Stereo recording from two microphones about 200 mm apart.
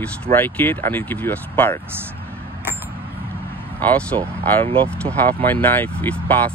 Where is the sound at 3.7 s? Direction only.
5° left (ahead or behind).